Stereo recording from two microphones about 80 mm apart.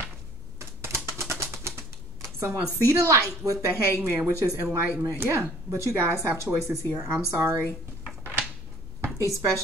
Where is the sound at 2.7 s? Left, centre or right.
Right.